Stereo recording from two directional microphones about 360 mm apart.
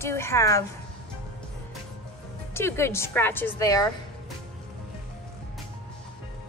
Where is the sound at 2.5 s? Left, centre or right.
Centre.